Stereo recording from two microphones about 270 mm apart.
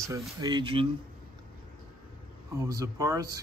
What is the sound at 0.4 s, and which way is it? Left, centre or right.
Speech, centre.